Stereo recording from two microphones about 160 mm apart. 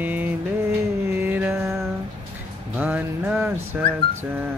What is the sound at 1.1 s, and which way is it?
Music, 10° right (ahead or behind).